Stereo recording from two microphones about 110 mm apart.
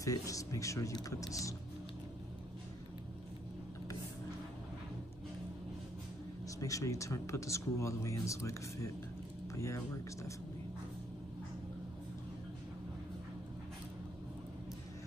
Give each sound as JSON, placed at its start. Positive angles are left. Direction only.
{"t": 0.0, "sound": "speech", "side_deg": 30}
{"t": 6.6, "sound": "speech", "side_deg": 30}